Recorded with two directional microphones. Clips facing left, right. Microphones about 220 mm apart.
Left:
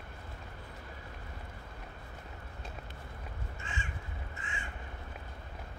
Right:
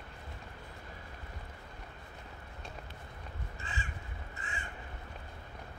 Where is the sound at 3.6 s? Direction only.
35° right (ahead or behind).